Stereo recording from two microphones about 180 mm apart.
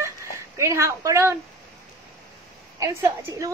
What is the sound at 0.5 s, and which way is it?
Speech, 15° right (ahead or behind).